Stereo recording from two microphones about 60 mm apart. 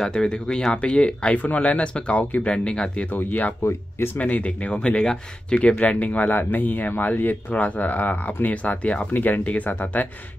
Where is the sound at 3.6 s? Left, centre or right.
Left.